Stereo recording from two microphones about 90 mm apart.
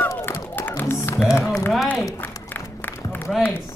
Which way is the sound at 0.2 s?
25° left (ahead or behind).